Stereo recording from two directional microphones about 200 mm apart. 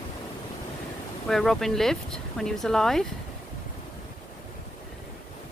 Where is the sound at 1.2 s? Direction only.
Centre (ahead or behind).